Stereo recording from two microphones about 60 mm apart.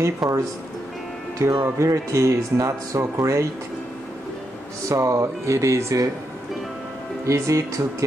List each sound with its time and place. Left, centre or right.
0.2 s a woman's voice: centre
1.4 s speech: right
4.8 s speech: right
7.2 s speech: right